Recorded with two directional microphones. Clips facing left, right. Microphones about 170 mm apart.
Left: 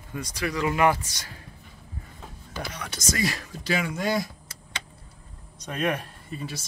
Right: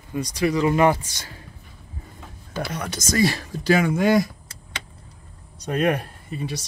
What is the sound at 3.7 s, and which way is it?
Speech, 50° right (ahead or behind).